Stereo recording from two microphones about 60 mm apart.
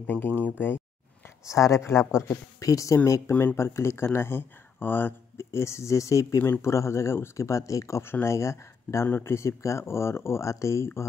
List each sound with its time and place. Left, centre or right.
0.0 s speech: left
1.5 s speech: left
2.2 s speech: left
3.1 s speech: left
8.0 s speech: left